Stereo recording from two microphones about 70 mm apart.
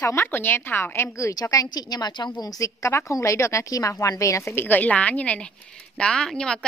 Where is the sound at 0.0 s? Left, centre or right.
Left.